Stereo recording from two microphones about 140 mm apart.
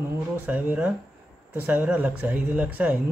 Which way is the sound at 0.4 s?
10° right (ahead or behind).